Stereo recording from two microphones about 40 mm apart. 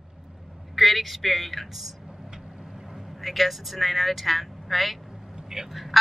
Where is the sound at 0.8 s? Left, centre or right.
Centre.